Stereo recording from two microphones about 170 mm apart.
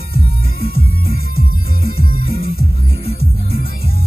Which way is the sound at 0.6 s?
60° left (ahead or behind).